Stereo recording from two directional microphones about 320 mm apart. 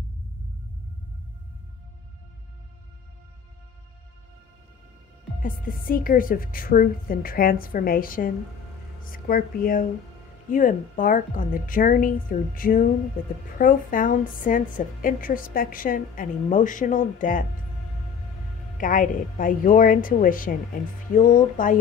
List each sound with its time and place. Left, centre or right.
5.4 s a woman's voice: left
18.8 s a woman's voice: left